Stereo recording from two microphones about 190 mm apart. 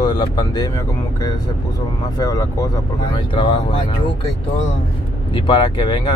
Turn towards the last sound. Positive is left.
turn(degrees=25)  # may be behind; listen again after turning